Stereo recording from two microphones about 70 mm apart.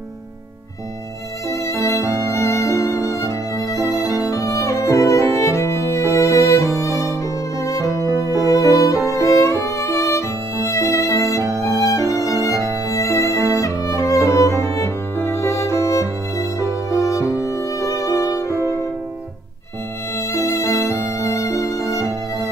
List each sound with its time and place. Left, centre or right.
1.5 s music: left
3.8 s violin: right
4.2 s music: left
8.0 s music: right
8.5 s music: left
9.1 s violin: left
12.9 s music: left
18.5 s music: right
20.2 s violin: left